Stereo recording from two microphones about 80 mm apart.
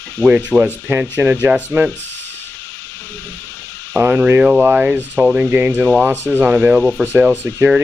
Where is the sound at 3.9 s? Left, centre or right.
Right.